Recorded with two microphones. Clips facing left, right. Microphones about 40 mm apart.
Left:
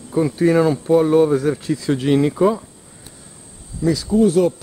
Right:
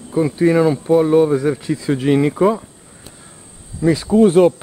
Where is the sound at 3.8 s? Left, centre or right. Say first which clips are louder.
Right 3 dB; right.